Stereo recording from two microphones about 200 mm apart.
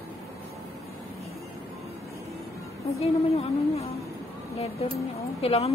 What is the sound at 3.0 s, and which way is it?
Speech, 30° left (ahead or behind).